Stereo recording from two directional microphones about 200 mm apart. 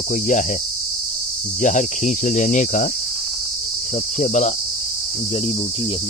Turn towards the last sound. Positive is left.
turn(degrees=35)  # may be behind; listen again after turning